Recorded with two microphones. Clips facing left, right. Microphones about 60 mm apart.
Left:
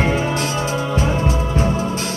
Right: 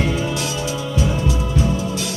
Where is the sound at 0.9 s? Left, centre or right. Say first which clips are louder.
Even; left.